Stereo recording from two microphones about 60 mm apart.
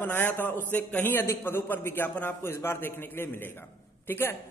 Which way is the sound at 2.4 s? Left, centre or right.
Left.